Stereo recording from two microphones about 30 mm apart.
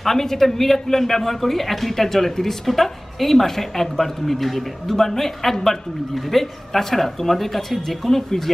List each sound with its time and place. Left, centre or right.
0.0 s a man's voice: centre